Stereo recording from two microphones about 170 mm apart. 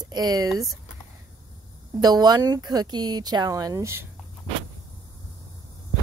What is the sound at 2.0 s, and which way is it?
Speech, 25° right (ahead or behind).